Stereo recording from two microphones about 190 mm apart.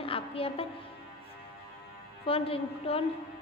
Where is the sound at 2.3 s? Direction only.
30° left (ahead or behind).